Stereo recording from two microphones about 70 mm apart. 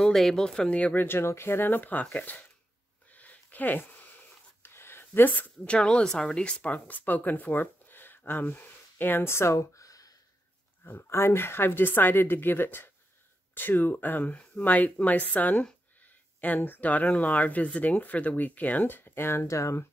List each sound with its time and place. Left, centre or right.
0.0 s speech: centre
1.0 s speech: left
3.1 s a sound: left
5.7 s speech: centre; by 10.1 s left
10.8 s speech: left